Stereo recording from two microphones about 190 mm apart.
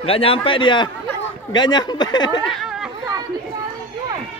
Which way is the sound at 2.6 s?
Centre (ahead or behind).